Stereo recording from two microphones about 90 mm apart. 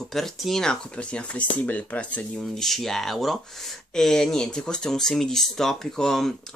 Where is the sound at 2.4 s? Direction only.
5° left (ahead or behind).